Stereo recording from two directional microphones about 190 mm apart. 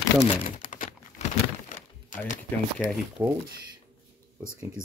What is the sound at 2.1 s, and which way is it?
Speech, 40° left (ahead or behind).